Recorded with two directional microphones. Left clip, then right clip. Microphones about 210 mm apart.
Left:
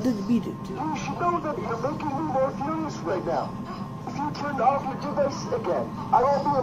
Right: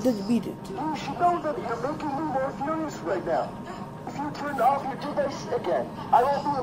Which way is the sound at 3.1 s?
20° right (ahead or behind).